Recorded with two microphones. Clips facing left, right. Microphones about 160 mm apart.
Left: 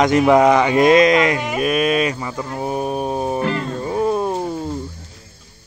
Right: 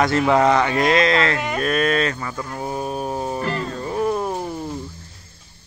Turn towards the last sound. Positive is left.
turn(degrees=25)  # may be behind; listen again after turning